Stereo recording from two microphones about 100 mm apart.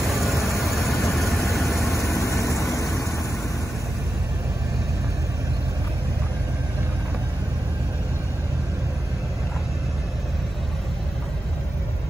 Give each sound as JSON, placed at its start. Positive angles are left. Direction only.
{"t": 0.0, "sound": "vehicle", "side_deg": 0}
{"t": 1.9, "sound": "vehicle", "side_deg": 30}